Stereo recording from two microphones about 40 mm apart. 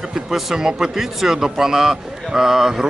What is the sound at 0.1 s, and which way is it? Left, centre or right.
Speech, centre.